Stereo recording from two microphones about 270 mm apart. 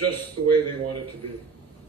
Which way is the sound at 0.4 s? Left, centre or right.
Right.